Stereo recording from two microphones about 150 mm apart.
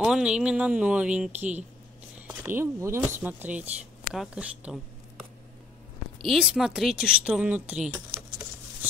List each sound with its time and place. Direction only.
0.0 s speech: 5° right (ahead or behind)
6.2 s speech: centre (ahead or behind)